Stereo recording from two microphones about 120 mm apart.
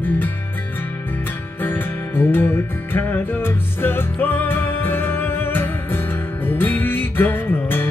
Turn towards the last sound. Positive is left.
turn(degrees=20)  # may be behind; listen again after turning